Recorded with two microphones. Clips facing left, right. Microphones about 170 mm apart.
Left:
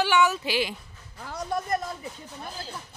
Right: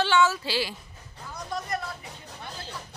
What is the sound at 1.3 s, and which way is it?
Speech, 55° left (ahead or behind).